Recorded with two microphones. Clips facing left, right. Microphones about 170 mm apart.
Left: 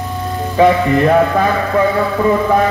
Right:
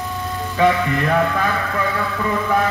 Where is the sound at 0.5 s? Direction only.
35° left (ahead or behind).